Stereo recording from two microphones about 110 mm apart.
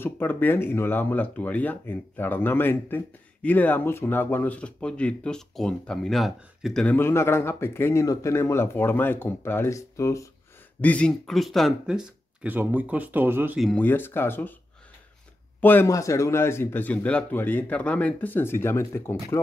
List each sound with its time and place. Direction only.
0.0 s speech: 20° left (ahead or behind)
7.0 s speech: 20° left (ahead or behind)
10.8 s speech: 10° left (ahead or behind); by 12.1 s 5° right (ahead or behind)
12.4 s speech: 15° right (ahead or behind)
13.7 s speech: 20° left (ahead or behind)
15.6 s speech: 15° left (ahead or behind)
15.9 s speech: 30° left (ahead or behind)